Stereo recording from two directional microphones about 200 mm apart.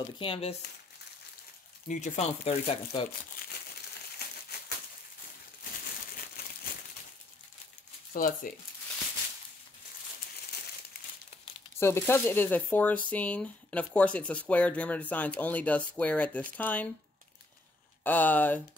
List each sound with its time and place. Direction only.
0.2 s speech: 30° left (ahead or behind)
1.9 s speech: 35° left (ahead or behind)
8.1 s speech: 45° left (ahead or behind)
11.8 s speech: 10° left (ahead or behind)
18.0 s speech: 10° left (ahead or behind)